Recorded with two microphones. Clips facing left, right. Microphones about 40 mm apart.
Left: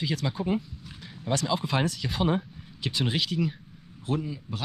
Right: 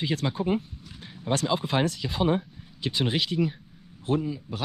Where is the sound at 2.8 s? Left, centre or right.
Right.